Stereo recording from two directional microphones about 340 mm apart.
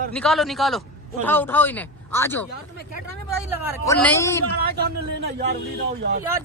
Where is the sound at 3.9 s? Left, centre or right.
Centre.